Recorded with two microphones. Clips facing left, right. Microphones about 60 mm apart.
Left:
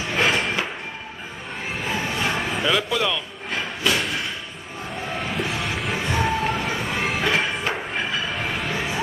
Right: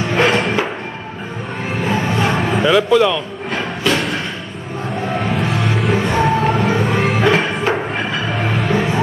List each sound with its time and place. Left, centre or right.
0.0 s music: right
1.9 s music: right
2.6 s music: right
5.2 s music: right
5.9 s music: right
6.5 s music: right